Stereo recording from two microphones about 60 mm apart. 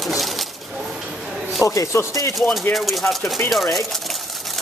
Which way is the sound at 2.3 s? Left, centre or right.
Centre.